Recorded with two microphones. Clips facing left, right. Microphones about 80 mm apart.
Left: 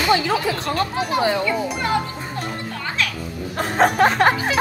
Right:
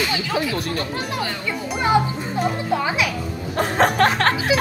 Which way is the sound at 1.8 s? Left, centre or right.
Centre.